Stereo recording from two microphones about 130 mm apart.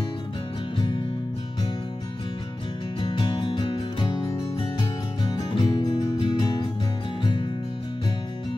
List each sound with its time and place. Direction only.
3.0 s music: 35° left (ahead or behind)